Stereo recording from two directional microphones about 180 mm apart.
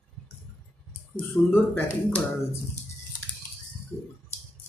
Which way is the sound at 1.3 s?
15° left (ahead or behind).